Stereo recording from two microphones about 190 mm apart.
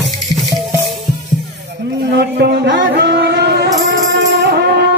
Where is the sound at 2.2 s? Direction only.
60° right (ahead or behind).